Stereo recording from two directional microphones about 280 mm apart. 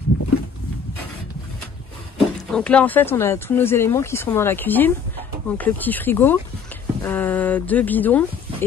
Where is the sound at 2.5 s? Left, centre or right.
Centre.